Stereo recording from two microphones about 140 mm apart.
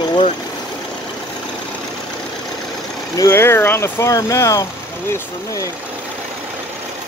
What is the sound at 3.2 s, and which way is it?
Speech, 15° left (ahead or behind).